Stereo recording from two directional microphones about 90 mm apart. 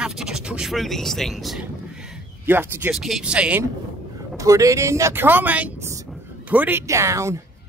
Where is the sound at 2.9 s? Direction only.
5° right (ahead or behind).